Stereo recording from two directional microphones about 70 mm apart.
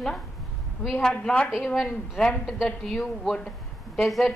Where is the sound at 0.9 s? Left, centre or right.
Centre.